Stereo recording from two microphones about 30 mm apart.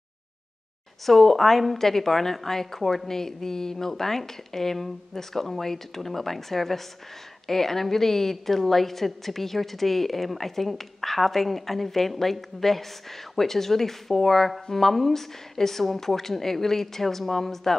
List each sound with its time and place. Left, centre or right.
1.0 s a woman's voice: centre